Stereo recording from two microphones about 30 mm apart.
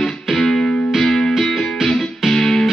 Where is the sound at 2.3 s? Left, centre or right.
Centre.